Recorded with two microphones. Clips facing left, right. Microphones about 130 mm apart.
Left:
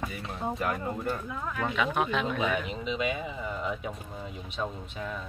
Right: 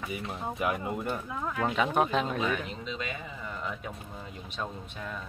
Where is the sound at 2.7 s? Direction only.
10° left (ahead or behind).